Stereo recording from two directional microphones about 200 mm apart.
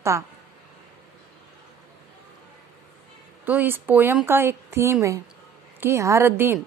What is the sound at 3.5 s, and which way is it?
A woman's voice, 10° right (ahead or behind).